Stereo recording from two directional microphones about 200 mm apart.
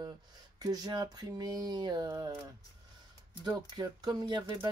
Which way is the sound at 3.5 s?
20° right (ahead or behind).